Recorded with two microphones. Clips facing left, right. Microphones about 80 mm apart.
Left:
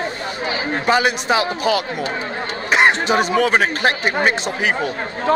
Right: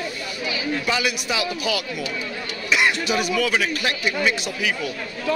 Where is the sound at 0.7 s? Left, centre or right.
Left.